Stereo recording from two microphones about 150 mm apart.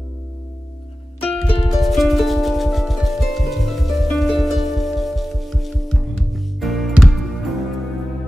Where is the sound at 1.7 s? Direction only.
Centre (ahead or behind).